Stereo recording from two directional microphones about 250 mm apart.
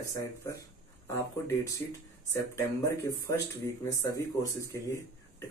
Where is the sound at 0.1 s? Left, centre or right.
Centre.